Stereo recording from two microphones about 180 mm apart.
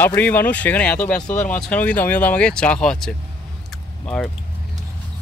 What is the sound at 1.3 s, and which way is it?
Speech, 45° left (ahead or behind).